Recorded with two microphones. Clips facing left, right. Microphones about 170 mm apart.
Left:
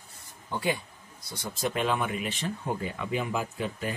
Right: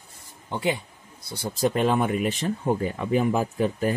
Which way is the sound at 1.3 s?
35° right (ahead or behind).